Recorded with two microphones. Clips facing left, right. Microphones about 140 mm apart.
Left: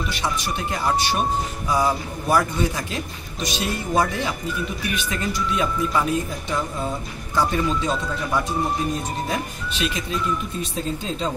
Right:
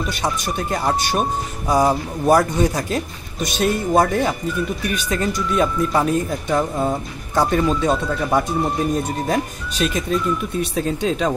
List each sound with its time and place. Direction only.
0.1 s speech: 45° right (ahead or behind)
9.8 s speech: 40° right (ahead or behind)
10.6 s speech: 75° right (ahead or behind)